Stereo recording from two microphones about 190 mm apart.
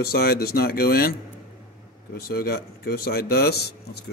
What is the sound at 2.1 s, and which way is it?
A man's voice, 50° left (ahead or behind).